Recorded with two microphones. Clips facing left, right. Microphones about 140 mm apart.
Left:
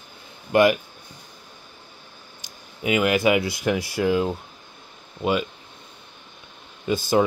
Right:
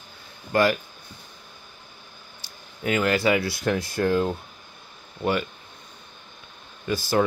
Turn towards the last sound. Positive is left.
turn(degrees=20)  # may be behind; listen again after turning